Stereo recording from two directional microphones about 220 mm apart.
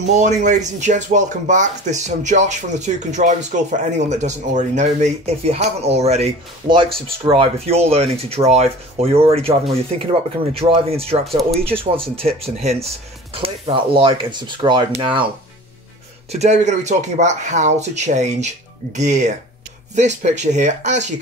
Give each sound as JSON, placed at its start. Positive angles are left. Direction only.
{"t": 0.0, "sound": "speech", "side_deg": -30}
{"t": 10.5, "sound": "speech", "side_deg": -25}
{"t": 11.2, "sound": "speech", "side_deg": 0}
{"t": 11.8, "sound": "speech", "side_deg": -25}
{"t": 16.3, "sound": "speech", "side_deg": -30}